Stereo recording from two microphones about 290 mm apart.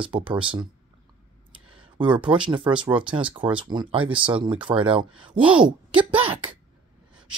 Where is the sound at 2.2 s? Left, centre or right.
Centre.